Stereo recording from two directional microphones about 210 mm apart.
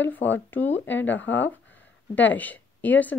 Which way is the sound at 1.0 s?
60° left (ahead or behind).